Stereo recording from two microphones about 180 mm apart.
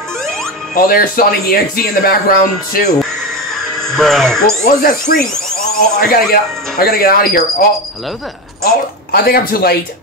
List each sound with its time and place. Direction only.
0.7 s speech: 55° left (ahead or behind)
3.9 s speech: centre (ahead or behind)
4.6 s speech: 50° left (ahead or behind)
9.1 s speech: 55° left (ahead or behind)